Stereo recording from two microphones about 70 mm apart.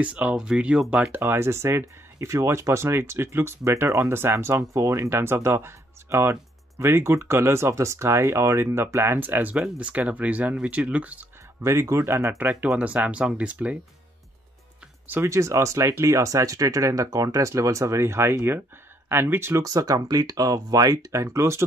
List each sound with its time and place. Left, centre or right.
0.0 s speech: centre
1.2 s speech: right; by 11.2 s centre
11.6 s speech: right
12.7 s speech: right
15.2 s speech: right
19.6 s speech: right